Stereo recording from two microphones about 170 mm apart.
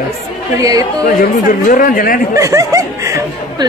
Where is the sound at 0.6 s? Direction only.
20° right (ahead or behind).